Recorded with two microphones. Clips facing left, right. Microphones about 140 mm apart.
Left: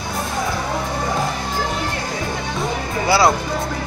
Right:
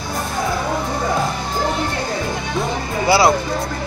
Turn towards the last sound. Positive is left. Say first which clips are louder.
# right 1 dB
turn(degrees=-5)  # may be behind; listen again after turning